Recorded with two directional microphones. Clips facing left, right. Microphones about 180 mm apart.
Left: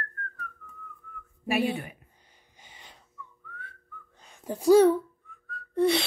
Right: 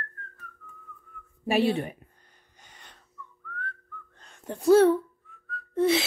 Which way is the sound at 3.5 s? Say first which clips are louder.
Right 8 dB; 5° left (ahead or behind).